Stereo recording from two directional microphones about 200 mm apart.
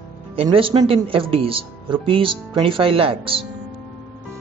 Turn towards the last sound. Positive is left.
turn(degrees=-25)  # may be behind; listen again after turning